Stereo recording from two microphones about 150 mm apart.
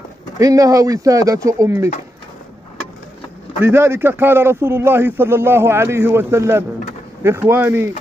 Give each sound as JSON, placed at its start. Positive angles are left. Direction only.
{"t": 0.4, "sound": "speech", "side_deg": -25}
{"t": 3.6, "sound": "a man's voice", "side_deg": -15}